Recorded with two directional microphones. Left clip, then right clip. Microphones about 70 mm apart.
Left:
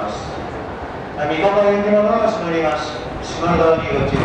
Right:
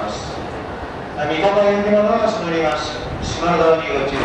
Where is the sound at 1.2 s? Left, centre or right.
Centre.